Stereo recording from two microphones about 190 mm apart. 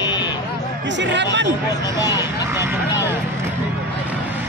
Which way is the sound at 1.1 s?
70° right (ahead or behind).